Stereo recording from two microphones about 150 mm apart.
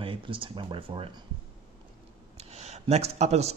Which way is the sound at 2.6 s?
45° right (ahead or behind).